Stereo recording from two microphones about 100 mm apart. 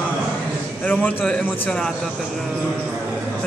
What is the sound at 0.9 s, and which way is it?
Speech, 15° left (ahead or behind).